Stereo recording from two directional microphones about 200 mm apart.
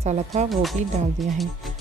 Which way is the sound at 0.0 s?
35° right (ahead or behind).